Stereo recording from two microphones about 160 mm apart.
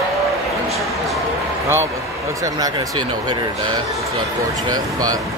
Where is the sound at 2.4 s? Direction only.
25° right (ahead or behind).